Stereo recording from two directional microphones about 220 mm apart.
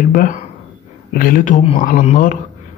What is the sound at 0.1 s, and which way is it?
Speech, 35° left (ahead or behind).